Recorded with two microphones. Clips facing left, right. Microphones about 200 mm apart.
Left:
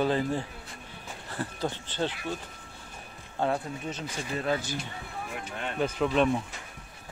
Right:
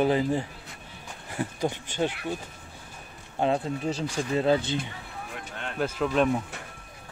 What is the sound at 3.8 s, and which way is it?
Speech, 35° right (ahead or behind).